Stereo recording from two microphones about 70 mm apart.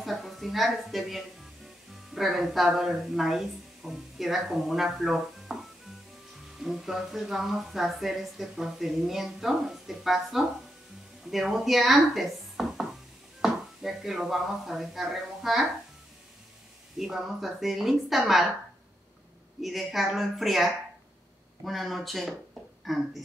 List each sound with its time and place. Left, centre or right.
0.0 s a woman's voice: centre
6.6 s speech: centre
17.0 s speech: centre
19.6 s speech: centre